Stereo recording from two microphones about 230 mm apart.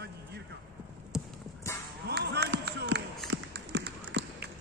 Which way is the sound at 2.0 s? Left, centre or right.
Right.